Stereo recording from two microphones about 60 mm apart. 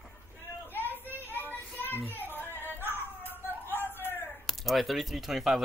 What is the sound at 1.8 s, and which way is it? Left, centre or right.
Children playing, left.